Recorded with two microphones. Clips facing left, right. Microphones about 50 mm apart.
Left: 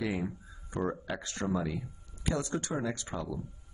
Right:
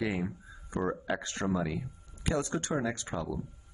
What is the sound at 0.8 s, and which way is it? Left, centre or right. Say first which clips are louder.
Speech: right 4 dB; right.